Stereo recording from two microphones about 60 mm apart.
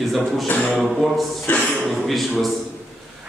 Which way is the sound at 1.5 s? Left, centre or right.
Left.